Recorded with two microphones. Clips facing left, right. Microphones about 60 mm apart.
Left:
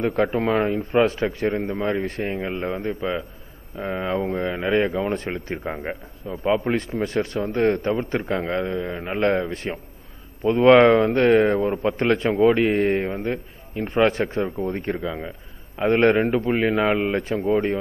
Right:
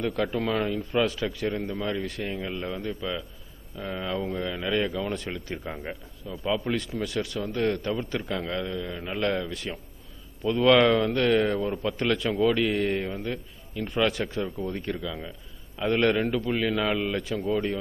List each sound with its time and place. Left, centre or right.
0.0 s a man's voice: left